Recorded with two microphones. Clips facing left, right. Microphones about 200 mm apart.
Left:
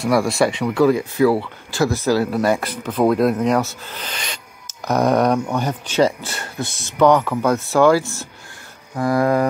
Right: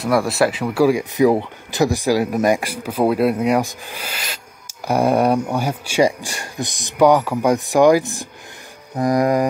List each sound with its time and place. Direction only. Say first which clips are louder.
0.0 s speech: even; centre (ahead or behind)